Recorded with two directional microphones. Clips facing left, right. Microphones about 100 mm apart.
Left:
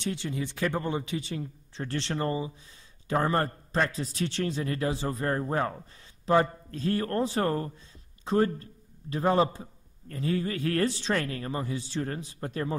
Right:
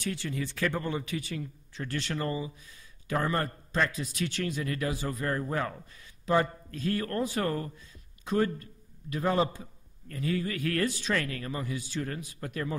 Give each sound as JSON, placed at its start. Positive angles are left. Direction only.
{"t": 0.0, "sound": "a man's voice", "side_deg": 20}